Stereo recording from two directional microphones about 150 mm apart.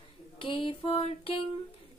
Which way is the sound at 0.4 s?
35° left (ahead or behind).